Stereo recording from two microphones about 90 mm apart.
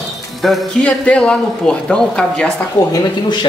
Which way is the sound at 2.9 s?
50° left (ahead or behind).